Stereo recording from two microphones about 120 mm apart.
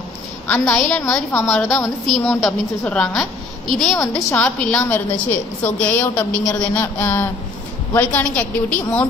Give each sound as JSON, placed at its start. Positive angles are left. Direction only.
{"t": 0.7, "sound": "a woman's voice", "side_deg": 10}
{"t": 2.0, "sound": "a woman's voice", "side_deg": 0}